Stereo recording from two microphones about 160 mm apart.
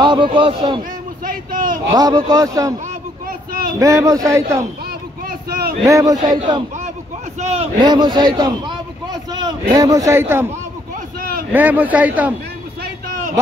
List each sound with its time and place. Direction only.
0.0 s a man's voice: 30° right (ahead or behind)
1.2 s speech: 60° right (ahead or behind)
2.0 s a man's voice: 25° right (ahead or behind)
3.3 s a sound: 65° right (ahead or behind)
3.8 s a man's voice: 20° right (ahead or behind)
5.9 s a man's voice: 20° right (ahead or behind)
7.3 s a man's voice: 40° right (ahead or behind)
7.8 s a man's voice: 25° right (ahead or behind)
11.5 s a man's voice: 10° right (ahead or behind)